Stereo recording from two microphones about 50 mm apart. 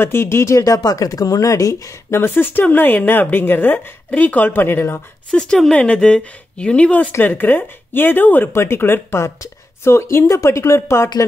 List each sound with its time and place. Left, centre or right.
0.0 s speech: left
1.3 s speech: left
5.3 s speech: centre
7.2 s speech: left
8.5 s speech: left